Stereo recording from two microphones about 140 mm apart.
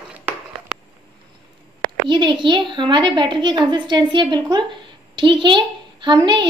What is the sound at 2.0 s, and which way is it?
A woman's voice, 35° right (ahead or behind).